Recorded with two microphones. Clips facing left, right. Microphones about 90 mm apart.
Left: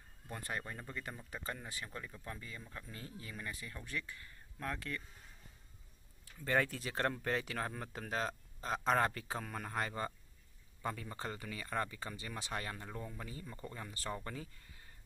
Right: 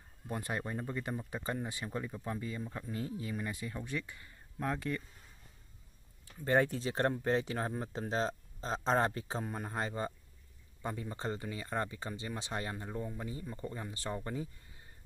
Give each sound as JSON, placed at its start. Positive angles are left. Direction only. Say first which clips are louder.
{"t": 0.3, "sound": "speech", "louder": "right 5 dB", "side_deg": -20}
{"t": 6.4, "sound": "speech", "louder": "right 5 dB", "side_deg": -25}